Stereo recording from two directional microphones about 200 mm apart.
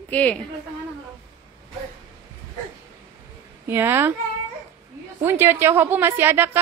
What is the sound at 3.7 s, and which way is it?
Speech, 10° right (ahead or behind).